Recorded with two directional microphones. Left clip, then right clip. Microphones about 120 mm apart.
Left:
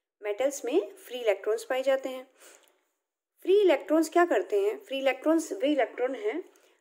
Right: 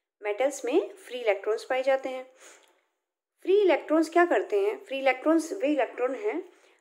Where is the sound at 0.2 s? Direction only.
30° left (ahead or behind).